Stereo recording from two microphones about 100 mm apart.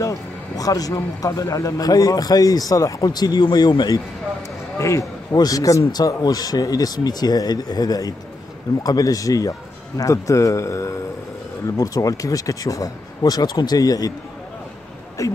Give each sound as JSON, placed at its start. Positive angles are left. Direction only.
{"t": 0.0, "sound": "a man's voice", "side_deg": 35}
{"t": 4.7, "sound": "a man's voice", "side_deg": 30}
{"t": 15.2, "sound": "a man's voice", "side_deg": 35}